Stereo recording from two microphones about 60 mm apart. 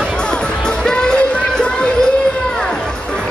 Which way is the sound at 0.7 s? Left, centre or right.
Centre.